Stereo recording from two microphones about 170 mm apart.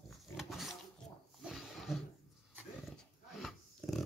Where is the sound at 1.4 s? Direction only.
Centre (ahead or behind).